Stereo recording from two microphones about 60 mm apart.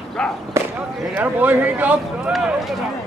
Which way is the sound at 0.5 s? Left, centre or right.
Right.